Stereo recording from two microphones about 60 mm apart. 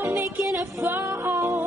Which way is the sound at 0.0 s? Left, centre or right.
Right.